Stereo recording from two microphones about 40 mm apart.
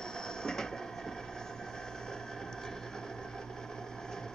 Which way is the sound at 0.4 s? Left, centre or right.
Centre.